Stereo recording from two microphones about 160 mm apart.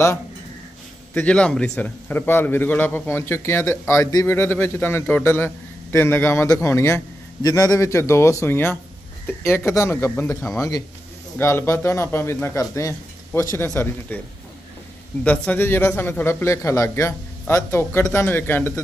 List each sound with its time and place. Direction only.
1.1 s a man's voice: 5° left (ahead or behind)
15.2 s a man's voice: 10° left (ahead or behind)